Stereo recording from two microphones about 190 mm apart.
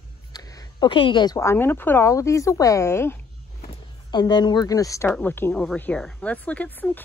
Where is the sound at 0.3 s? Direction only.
20° left (ahead or behind).